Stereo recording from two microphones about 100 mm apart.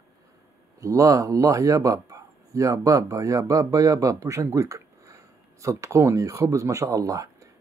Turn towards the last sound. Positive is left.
turn(degrees=-35)  # may be behind; listen again after turning